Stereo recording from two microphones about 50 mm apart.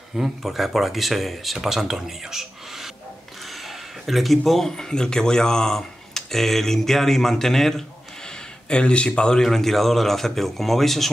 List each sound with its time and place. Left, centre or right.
0.2 s speech: centre
3.6 s a sound: centre
4.4 s speech: centre
8.6 s speech: left
9.4 s speech: centre